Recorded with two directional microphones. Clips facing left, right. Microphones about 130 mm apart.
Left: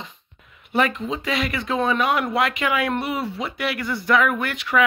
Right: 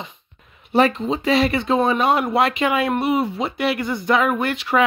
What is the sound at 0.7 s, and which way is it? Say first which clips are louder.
A woman's voice: right 5 dB; 30° right (ahead or behind).